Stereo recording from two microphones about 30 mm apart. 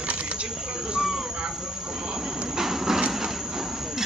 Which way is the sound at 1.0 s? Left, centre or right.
Centre.